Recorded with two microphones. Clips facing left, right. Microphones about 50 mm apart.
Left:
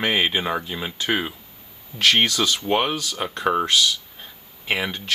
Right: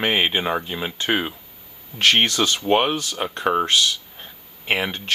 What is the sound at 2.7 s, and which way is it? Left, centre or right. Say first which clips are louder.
Speech: right 3 dB; right.